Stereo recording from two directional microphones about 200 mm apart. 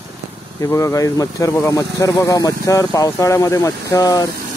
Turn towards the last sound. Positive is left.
turn(degrees=20)  # may be behind; listen again after turning